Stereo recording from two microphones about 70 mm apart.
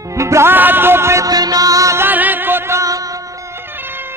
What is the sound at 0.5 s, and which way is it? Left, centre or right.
Music, right.